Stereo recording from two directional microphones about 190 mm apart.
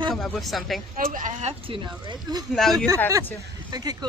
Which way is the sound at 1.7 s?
25° right (ahead or behind).